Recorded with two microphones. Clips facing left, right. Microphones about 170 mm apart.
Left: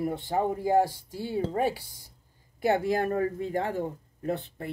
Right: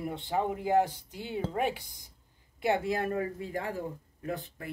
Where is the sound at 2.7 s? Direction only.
35° left (ahead or behind).